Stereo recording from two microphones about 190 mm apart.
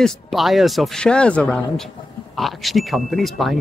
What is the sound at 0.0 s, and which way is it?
Speech, centre (ahead or behind).